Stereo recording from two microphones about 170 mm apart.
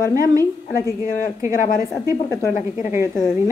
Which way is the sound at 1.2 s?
50° left (ahead or behind).